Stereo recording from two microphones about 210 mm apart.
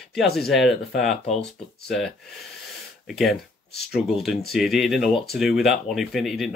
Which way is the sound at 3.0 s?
Centre (ahead or behind).